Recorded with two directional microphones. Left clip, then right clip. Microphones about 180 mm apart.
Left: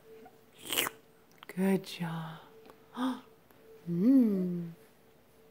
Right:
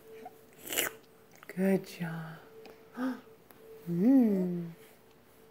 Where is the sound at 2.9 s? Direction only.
20° left (ahead or behind).